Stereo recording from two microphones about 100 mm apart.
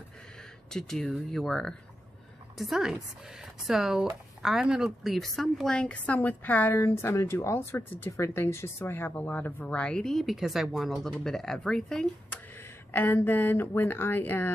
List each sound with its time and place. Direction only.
0.7 s a woman's voice: 5° left (ahead or behind)
6.8 s speech: 30° left (ahead or behind); by 12.4 s 5° left (ahead or behind)
12.5 s speech: 20° left (ahead or behind)